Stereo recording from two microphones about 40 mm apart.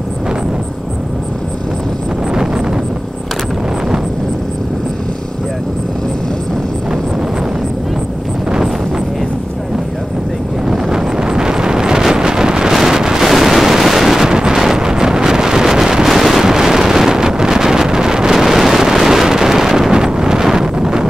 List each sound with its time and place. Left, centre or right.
2.3 s wind noise: centre
10.6 s wind noise: centre
13.3 s a sound: centre
18.4 s wind noise: centre